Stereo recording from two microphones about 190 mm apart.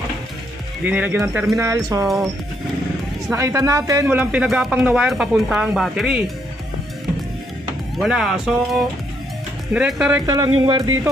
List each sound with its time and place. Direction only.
0.8 s speech: 10° right (ahead or behind)
3.3 s speech: 15° right (ahead or behind)
8.0 s speech: centre (ahead or behind)
10.2 s speech: 20° right (ahead or behind)